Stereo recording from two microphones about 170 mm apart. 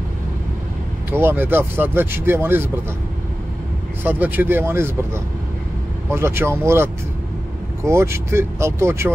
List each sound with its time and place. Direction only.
1.1 s speech: 15° right (ahead or behind)
4.0 s speech: 10° right (ahead or behind)